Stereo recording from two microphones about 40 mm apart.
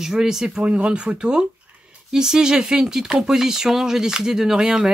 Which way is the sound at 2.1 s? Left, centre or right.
Centre.